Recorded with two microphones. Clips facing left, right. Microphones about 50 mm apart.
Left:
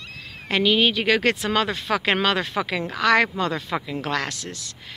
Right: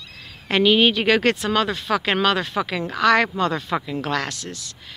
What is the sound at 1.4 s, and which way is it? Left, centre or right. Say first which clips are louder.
Speech: right 1 dB; centre.